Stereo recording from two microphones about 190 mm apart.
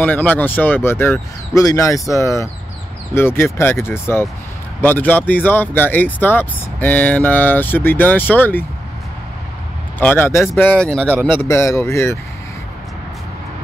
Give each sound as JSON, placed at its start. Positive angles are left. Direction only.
{"t": 0.0, "sound": "speech", "side_deg": 10}
{"t": 9.9, "sound": "speech", "side_deg": 10}